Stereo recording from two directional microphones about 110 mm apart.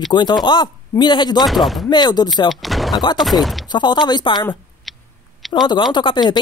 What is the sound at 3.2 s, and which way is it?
Speech, centre (ahead or behind).